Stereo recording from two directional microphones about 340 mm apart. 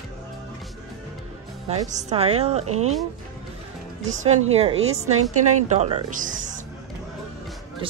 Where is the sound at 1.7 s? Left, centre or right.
Centre.